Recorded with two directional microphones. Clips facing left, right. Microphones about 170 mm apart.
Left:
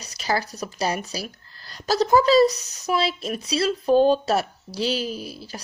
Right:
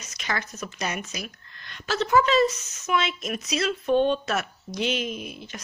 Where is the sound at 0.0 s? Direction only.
35° left (ahead or behind).